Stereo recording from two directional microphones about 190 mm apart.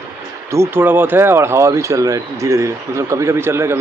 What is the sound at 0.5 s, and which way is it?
Speech, 15° right (ahead or behind).